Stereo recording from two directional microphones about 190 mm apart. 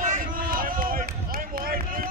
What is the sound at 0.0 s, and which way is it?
Run, 45° right (ahead or behind).